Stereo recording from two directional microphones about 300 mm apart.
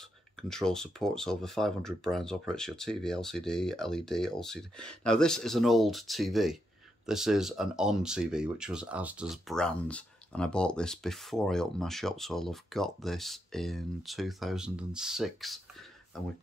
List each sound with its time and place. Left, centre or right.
0.4 s speech: centre